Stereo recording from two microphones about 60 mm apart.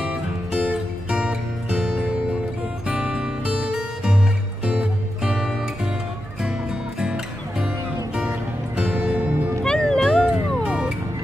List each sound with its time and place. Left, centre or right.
0.0 s music: centre
5.2 s music: centre
7.0 s music: centre
8.7 s music: right
9.7 s cat: centre
10.3 s music: centre